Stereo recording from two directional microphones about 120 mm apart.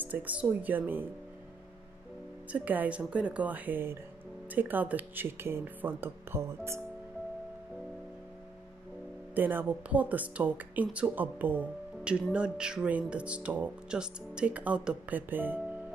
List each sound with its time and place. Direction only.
0.0 s speech: 15° right (ahead or behind)
2.5 s speech: 15° right (ahead or behind)
9.3 s speech: 15° right (ahead or behind)